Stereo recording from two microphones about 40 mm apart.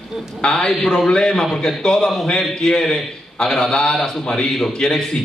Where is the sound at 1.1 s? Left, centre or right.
Centre.